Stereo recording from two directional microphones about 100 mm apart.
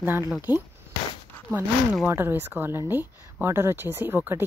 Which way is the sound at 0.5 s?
20° right (ahead or behind).